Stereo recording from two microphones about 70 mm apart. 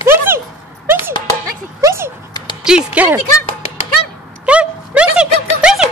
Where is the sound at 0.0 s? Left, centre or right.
Right.